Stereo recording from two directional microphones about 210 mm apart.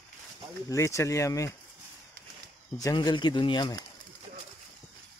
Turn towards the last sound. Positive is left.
turn(degrees=20)  # may be behind; listen again after turning